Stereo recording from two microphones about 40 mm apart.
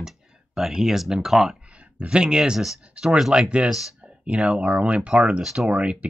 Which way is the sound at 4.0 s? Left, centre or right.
Right.